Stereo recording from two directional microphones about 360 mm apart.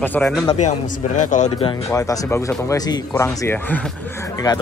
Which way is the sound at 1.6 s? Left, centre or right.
Centre.